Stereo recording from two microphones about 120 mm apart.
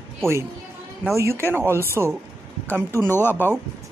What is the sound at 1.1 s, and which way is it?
Speech, 25° right (ahead or behind).